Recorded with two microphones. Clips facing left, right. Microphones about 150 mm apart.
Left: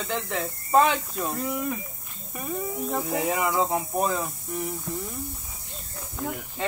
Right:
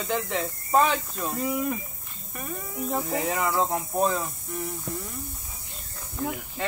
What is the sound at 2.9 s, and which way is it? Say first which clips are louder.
Speech: even; centre (ahead or behind).